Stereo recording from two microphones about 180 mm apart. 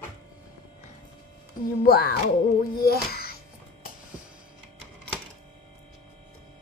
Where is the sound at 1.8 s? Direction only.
55° left (ahead or behind).